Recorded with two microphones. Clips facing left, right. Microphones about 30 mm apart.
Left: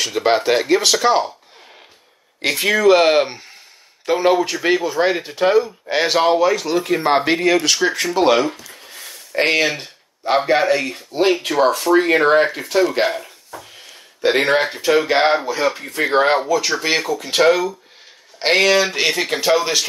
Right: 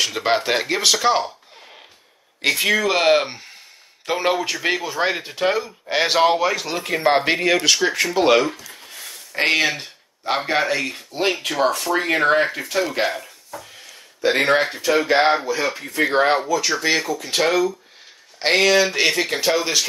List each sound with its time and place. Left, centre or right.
0.0 s speech: centre
2.4 s speech: centre
7.2 s speech: centre
14.3 s speech: left; by 19.9 s centre